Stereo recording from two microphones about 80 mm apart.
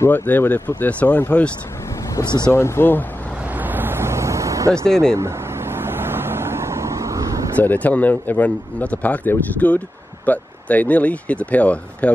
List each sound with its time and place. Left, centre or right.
0.1 s a man's voice: left
2.5 s speech: left
3.5 s vehicle: right
4.8 s speech: centre
5.1 s vehicle: right
7.5 s a man's voice: left